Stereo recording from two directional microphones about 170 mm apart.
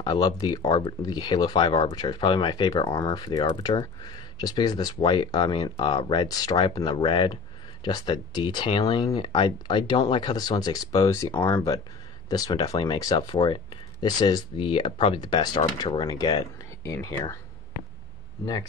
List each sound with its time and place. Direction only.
0.0 s speech: 25° left (ahead or behind)